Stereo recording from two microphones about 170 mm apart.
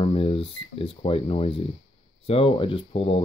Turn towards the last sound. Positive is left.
turn(degrees=35)  # may be behind; listen again after turning